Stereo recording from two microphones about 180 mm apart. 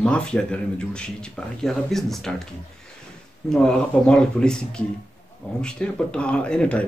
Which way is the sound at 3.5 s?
5° left (ahead or behind).